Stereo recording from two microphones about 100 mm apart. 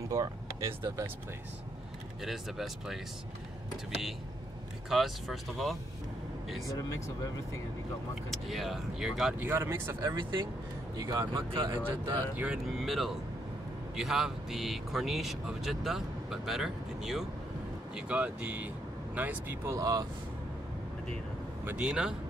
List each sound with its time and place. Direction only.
0.1 s speech: 35° right (ahead or behind)
2.2 s speech: centre (ahead or behind)
4.8 s speech: centre (ahead or behind)
8.3 s speech: centre (ahead or behind)
9.4 s speech: 25° right (ahead or behind)
10.0 s speech: 55° right (ahead or behind)
11.0 s speech: 40° right (ahead or behind)
11.5 s speech: 55° right (ahead or behind)
11.9 s speech: 40° right (ahead or behind)
12.6 s speech: centre (ahead or behind); by 19.7 s 20° right (ahead or behind)
19.7 s speech: 35° right (ahead or behind)
21.8 s speech: 10° right (ahead or behind)